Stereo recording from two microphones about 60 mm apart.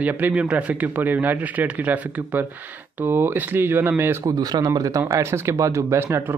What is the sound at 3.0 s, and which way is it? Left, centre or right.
Speech, right.